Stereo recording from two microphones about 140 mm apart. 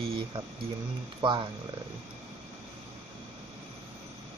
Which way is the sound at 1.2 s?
35° right (ahead or behind).